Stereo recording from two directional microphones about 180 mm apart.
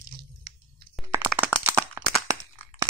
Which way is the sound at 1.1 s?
10° right (ahead or behind).